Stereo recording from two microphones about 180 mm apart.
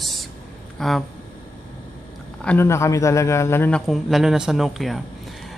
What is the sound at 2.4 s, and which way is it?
Speech, 10° left (ahead or behind).